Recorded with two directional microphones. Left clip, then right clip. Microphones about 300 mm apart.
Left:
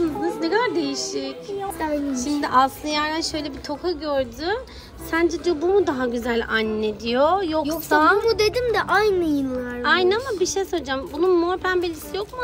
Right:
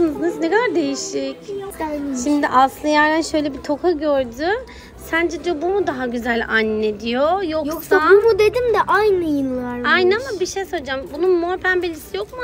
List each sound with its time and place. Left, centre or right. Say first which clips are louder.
0.0 s a sound: right 4 dB; centre
1.8 s a woman's voice: right 1 dB; centre
8.3 s a child's voice: right 5 dB; centre